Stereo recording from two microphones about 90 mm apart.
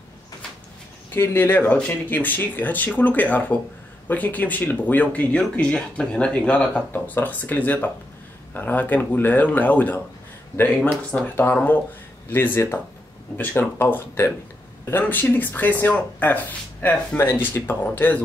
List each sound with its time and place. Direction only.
1.1 s speech: 25° left (ahead or behind)
17.2 s speech: 25° left (ahead or behind)